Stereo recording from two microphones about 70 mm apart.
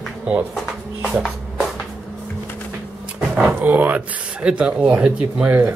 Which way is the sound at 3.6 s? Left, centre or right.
Right.